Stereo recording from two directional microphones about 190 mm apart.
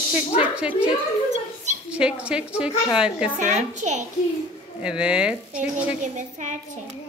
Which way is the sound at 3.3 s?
40° right (ahead or behind).